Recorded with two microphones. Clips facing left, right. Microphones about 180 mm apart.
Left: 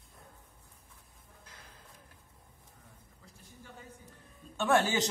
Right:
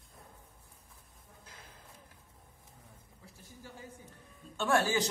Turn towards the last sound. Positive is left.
turn(degrees=20)  # may be behind; listen again after turning